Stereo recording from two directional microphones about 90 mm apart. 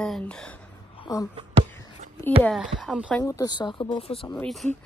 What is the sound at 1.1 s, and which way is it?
Speech, 40° left (ahead or behind).